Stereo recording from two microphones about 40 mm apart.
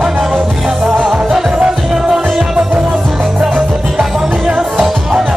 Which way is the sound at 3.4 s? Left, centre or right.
Centre.